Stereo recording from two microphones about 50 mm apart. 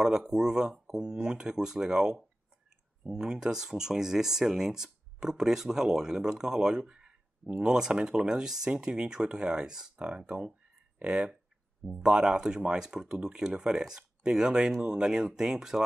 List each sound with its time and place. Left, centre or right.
0.0 s speech: centre